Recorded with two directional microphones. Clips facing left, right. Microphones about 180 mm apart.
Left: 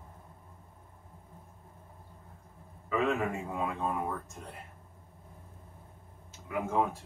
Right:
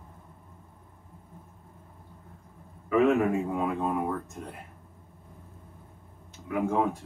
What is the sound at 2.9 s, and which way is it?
A man's voice, 5° right (ahead or behind).